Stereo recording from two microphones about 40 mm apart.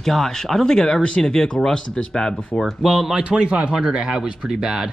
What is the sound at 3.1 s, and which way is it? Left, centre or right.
Speech, right.